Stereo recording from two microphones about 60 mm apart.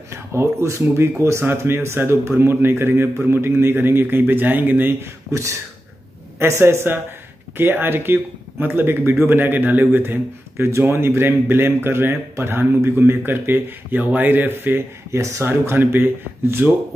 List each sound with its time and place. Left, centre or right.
0.1 s speech: right
6.4 s speech: right
15.1 s speech: right
15.4 s speech: right